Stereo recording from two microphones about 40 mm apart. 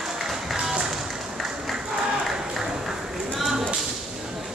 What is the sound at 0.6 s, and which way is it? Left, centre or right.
Music, centre.